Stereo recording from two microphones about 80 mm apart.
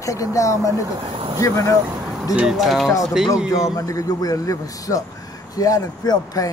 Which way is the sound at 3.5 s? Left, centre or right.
Left.